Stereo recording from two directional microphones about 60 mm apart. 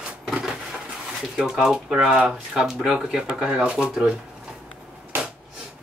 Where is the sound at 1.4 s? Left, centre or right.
Centre.